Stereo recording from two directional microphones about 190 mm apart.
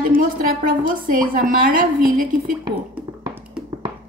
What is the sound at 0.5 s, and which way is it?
A woman's voice, 45° right (ahead or behind).